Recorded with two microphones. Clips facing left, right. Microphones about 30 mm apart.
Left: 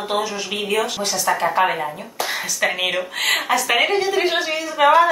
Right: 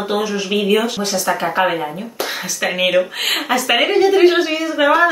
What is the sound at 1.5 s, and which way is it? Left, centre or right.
Speech, centre.